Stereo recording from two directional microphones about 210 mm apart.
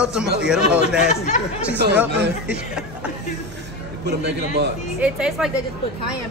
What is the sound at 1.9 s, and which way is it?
Speech, 5° right (ahead or behind).